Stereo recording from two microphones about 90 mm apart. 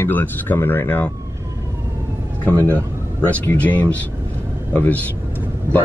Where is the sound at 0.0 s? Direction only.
20° left (ahead or behind).